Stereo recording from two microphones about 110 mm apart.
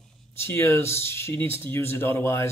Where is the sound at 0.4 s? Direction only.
20° left (ahead or behind).